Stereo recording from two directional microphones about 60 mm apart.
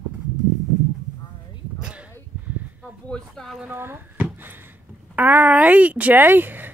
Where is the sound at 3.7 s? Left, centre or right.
Right.